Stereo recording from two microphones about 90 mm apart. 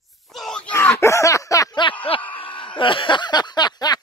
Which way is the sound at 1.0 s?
35° left (ahead or behind).